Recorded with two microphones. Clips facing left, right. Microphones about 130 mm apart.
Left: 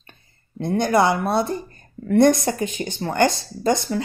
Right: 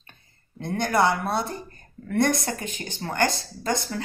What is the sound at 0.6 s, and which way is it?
Speech, 15° left (ahead or behind).